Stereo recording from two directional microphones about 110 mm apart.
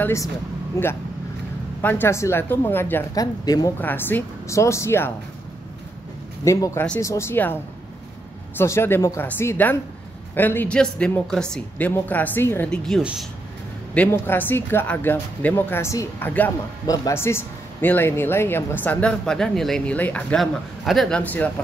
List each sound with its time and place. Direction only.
0.0 s speech: 25° left (ahead or behind)
1.8 s speech: 20° left (ahead or behind)
3.2 s speech: 35° left (ahead or behind)
3.8 s speech: 20° left (ahead or behind)
6.4 s speech: 30° left (ahead or behind)
8.5 s speech: 20° left (ahead or behind)
10.8 s speech: 5° left (ahead or behind)
11.9 s speech: 20° left (ahead or behind)
12.6 s speech: 5° left (ahead or behind)
13.9 s speech: 15° left (ahead or behind)
20.8 s speech: centre (ahead or behind)
21.2 s speech: 15° left (ahead or behind)